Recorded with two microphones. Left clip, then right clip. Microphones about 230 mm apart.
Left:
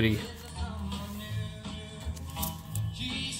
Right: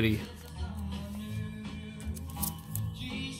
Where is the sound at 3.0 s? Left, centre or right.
Left.